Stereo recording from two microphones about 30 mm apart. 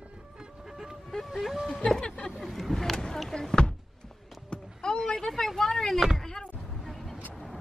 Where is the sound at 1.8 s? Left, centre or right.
Left.